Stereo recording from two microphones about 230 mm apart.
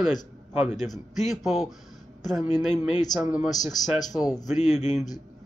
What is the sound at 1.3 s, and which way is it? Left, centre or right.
Speech, centre.